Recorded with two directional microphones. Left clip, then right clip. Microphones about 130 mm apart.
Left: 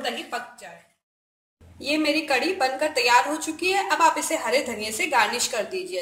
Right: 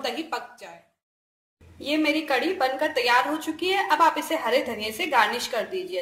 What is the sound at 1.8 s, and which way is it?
A woman's voice, 5° right (ahead or behind).